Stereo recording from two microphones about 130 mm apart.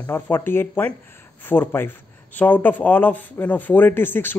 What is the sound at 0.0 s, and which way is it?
Speech, 15° left (ahead or behind).